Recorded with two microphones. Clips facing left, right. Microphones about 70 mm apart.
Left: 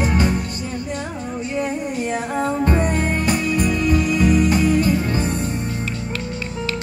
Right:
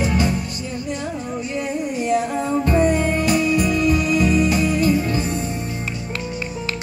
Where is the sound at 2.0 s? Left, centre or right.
Left.